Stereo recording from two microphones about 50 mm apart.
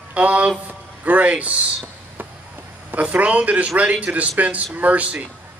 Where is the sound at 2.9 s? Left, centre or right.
Right.